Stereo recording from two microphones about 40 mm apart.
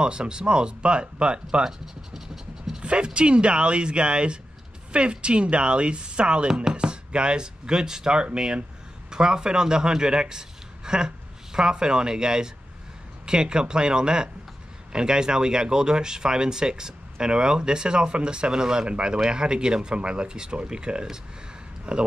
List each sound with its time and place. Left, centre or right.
0.0 s speech: right
2.8 s a man's voice: right